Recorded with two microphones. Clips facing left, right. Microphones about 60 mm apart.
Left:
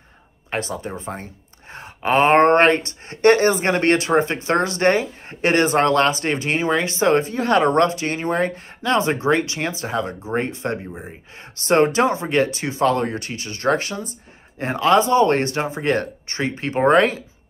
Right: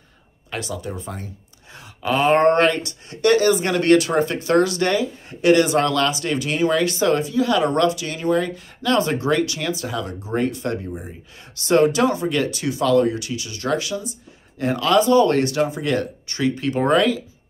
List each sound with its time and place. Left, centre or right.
0.5 s speech: left
8.9 s speech: left
14.6 s speech: left